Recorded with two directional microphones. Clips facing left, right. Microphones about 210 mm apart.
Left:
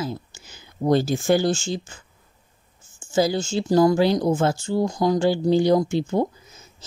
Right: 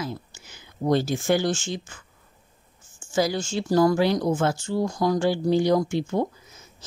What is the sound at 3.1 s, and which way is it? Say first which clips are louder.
Speech: left 3 dB; 25° left (ahead or behind).